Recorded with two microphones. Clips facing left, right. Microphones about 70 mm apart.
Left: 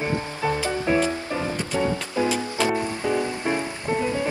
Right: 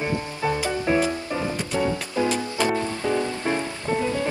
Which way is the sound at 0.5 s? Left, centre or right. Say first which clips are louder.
Even; left.